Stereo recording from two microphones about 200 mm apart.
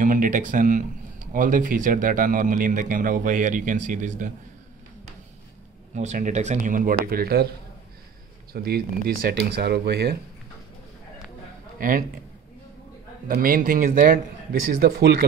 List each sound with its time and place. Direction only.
0.0 s speech: 40° right (ahead or behind)
5.9 s speech: 35° right (ahead or behind)
8.5 s a man's voice: 50° right (ahead or behind)
11.8 s a man's voice: 45° right (ahead or behind)
13.3 s a man's voice: 45° right (ahead or behind)